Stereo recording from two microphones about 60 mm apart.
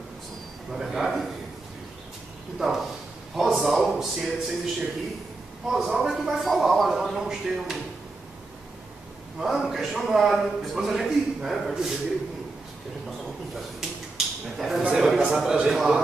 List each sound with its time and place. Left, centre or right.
0.7 s a man's voice: centre
3.3 s a man's voice: centre
9.4 s a man's voice: centre
13.7 s a sound: centre
14.8 s a man's voice: centre